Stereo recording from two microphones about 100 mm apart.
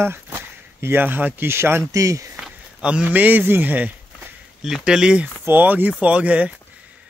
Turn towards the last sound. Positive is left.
turn(degrees=-15)  # may be behind; listen again after turning